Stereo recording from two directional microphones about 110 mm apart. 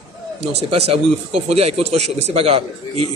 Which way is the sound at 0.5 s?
70° right (ahead or behind).